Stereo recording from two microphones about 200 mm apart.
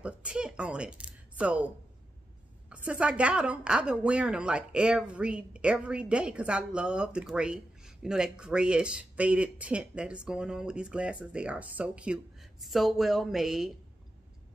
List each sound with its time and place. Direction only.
0.0 s speech: 5° right (ahead or behind)
2.7 s a woman's voice: 5° right (ahead or behind)